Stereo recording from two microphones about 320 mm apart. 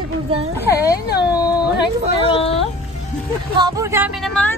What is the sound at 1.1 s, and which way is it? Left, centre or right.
Speech, left.